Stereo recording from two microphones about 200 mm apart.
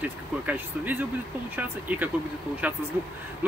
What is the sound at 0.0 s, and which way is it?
Speech, 5° right (ahead or behind).